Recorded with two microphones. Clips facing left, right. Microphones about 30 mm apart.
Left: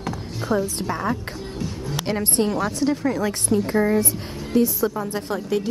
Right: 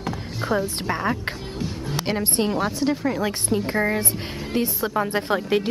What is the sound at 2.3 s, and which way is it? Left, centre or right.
A woman's voice, right.